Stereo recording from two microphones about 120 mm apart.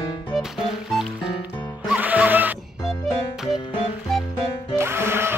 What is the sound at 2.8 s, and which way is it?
Music, 5° right (ahead or behind).